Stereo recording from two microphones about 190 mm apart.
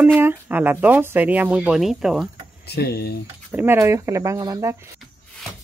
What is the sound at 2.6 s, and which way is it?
Speech, 60° left (ahead or behind).